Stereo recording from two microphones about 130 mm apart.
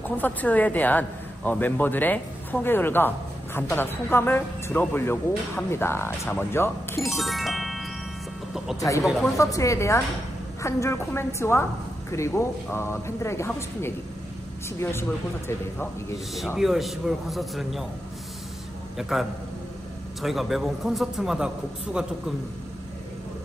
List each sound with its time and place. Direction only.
0.2 s a man's voice: 10° left (ahead or behind)
7.2 s music: centre (ahead or behind)
8.7 s a man's voice: 25° left (ahead or behind)
16.5 s speech: centre (ahead or behind)
18.9 s a man's voice: centre (ahead or behind)